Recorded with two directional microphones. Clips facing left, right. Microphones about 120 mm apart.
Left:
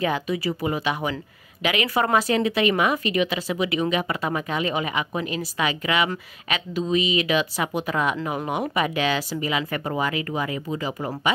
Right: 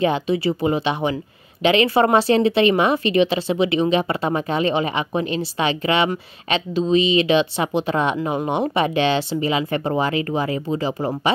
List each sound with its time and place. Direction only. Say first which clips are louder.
0.0 s speech: right 5 dB; 25° right (ahead or behind)